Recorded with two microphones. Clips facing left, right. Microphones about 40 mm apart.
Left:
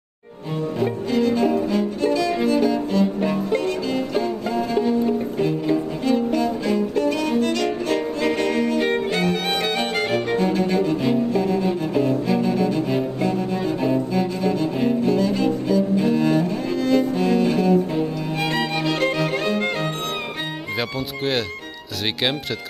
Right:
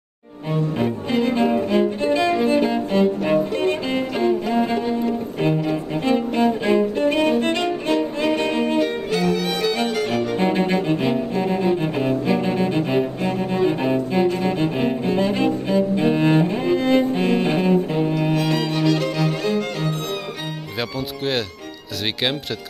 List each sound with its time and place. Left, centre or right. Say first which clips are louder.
1.1 s music: even; right
4.7 s music: left 2 dB; centre
8.2 s violin: even; right
8.8 s violin: even; left
10.3 s cello: even; right
18.4 s music: right 2 dB; left
21.2 s music: even; centre